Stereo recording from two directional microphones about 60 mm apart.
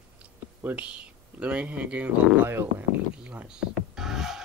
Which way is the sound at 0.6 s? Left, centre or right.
Right.